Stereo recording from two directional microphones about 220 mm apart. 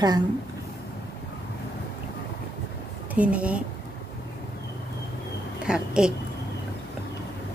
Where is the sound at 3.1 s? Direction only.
5° right (ahead or behind).